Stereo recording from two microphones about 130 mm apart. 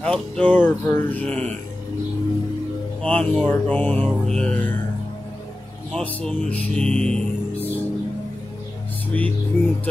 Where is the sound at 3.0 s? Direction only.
10° left (ahead or behind).